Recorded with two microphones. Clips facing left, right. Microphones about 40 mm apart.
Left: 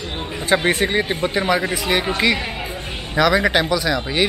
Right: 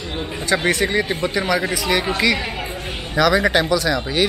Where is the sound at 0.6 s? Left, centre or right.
Left.